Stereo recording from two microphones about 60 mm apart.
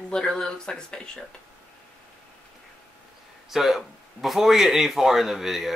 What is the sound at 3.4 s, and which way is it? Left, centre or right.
Speech, centre.